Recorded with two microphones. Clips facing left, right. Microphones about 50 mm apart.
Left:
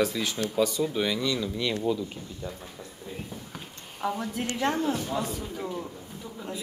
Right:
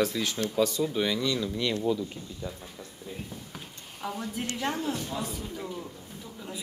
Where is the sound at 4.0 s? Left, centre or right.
Centre.